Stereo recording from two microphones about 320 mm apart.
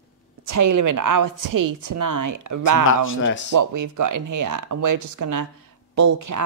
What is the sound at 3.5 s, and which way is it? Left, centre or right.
A woman's voice, right.